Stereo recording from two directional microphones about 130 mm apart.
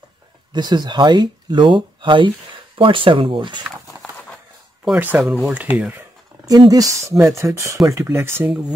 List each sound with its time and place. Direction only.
0.5 s speech: 35° right (ahead or behind)
4.8 s speech: 10° right (ahead or behind)
6.4 s speech: 30° right (ahead or behind); by 8.7 s 10° right (ahead or behind)